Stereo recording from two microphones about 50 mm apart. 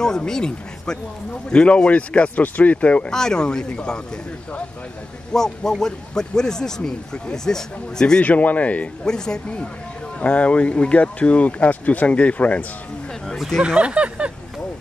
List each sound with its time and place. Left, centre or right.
0.3 s speech: centre
3.1 s a man's voice: centre
5.3 s a man's voice: centre
8.2 s speech: left
9.0 s a man's voice: centre
13.6 s speech: right